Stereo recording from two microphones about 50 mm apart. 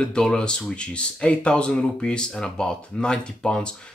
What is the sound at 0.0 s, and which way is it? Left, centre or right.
Speech, centre.